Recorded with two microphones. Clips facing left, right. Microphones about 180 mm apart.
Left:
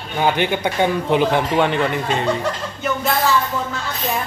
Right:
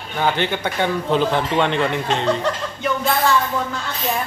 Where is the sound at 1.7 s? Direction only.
5° left (ahead or behind).